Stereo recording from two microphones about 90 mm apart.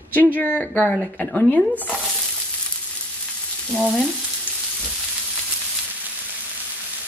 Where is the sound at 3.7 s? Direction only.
10° left (ahead or behind).